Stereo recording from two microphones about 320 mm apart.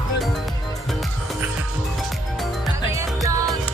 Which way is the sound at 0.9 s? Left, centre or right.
Centre.